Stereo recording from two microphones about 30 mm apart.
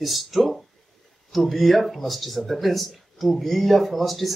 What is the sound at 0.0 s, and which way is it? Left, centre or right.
Speech, centre.